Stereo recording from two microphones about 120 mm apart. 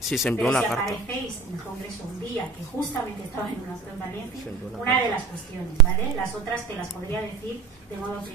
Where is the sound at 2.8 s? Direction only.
20° left (ahead or behind).